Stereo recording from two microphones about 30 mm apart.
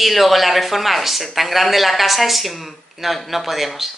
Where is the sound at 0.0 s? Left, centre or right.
Centre.